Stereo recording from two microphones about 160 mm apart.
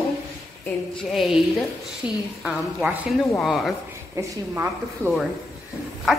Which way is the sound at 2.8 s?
Centre (ahead or behind).